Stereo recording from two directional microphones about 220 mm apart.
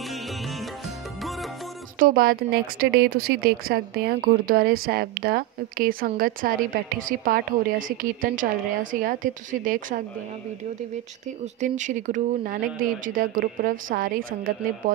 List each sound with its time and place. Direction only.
0.1 s music: centre (ahead or behind)
2.0 s speech: 40° right (ahead or behind)
11.6 s speech: 35° right (ahead or behind)